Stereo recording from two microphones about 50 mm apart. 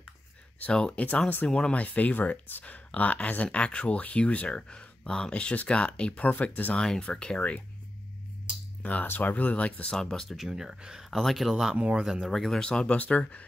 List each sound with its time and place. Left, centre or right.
1.0 s speech: left
1.5 s speech: centre
1.8 s speech: left
6.3 s speech: left
6.7 s speech: centre
8.8 s speech: left
9.9 s speech: centre
10.4 s speech: centre
11.1 s speech: centre
11.7 s speech: right
12.0 s speech: centre
12.3 s speech: centre; by 13.5 s left